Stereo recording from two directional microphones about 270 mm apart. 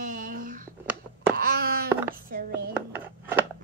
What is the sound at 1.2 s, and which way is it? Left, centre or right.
Wail, right.